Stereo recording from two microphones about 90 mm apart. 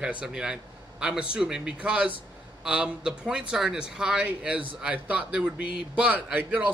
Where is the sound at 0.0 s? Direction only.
10° right (ahead or behind).